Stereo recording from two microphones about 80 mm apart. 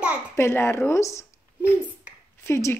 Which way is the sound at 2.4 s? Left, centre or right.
Left.